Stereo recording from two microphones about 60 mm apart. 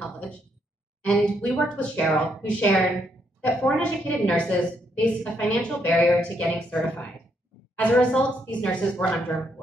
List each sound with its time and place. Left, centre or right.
1.0 s a woman's voice: left